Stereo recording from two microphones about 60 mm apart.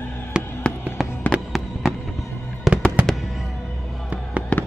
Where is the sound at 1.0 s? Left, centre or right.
Centre.